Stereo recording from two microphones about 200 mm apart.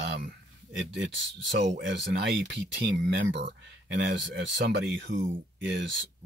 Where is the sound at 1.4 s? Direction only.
65° right (ahead or behind).